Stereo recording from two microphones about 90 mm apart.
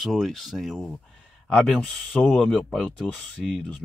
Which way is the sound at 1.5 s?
10° left (ahead or behind).